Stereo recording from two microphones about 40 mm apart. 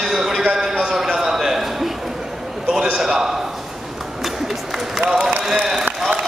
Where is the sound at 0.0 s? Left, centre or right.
Centre.